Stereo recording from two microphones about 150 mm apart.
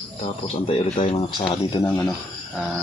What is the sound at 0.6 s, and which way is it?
Speech, 45° left (ahead or behind).